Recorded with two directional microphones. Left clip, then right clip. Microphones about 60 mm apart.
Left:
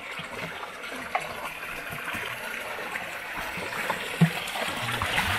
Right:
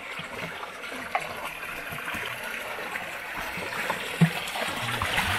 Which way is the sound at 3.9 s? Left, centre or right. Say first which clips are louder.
Even; left.